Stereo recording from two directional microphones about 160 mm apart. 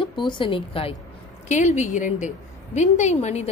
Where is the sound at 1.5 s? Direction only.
50° left (ahead or behind).